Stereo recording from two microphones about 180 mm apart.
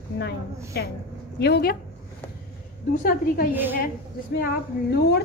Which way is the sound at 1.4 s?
60° left (ahead or behind).